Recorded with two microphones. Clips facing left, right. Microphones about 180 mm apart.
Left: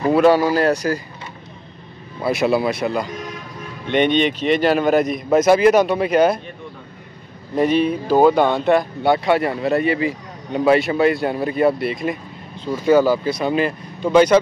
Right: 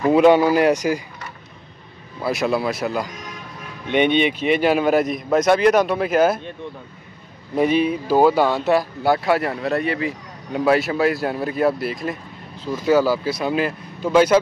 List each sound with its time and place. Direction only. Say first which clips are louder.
0.1 s speech: right 1 dB; 15° right (ahead or behind)
2.2 s speech: left 3 dB; centre (ahead or behind)
7.5 s speech: left 1 dB; 10° right (ahead or behind)